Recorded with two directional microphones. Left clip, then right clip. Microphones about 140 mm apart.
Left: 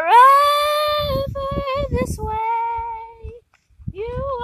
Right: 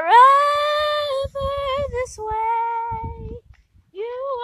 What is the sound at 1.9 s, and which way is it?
Child singing, 20° left (ahead or behind).